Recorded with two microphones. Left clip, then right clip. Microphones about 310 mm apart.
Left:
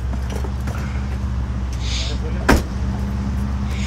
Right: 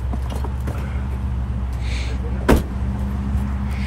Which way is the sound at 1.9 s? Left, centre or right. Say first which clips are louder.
Left 6 dB; centre.